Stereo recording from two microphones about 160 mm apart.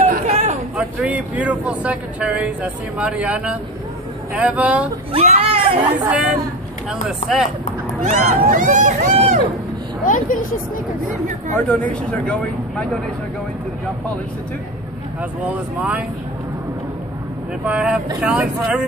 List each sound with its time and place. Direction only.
0.3 s a sound: 45° right (ahead or behind)
0.7 s speech: 10° right (ahead or behind)
5.1 s speech: 40° right (ahead or behind)
5.8 s speech: 10° right (ahead or behind)
8.0 s speech: 55° right (ahead or behind)
10.0 s speech: 55° left (ahead or behind)
11.5 s speech: 10° left (ahead or behind)
15.5 s speech: 10° right (ahead or behind)
17.6 s speech: 5° right (ahead or behind)